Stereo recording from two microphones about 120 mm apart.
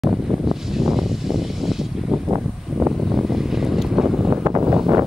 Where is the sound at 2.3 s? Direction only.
15° right (ahead or behind).